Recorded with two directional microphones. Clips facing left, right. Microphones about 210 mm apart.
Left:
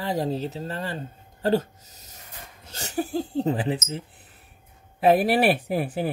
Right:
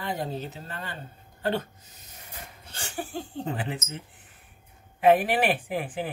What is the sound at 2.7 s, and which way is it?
Speech, 40° left (ahead or behind).